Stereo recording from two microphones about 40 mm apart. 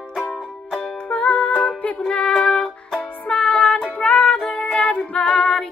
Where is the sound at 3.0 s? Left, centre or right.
Left.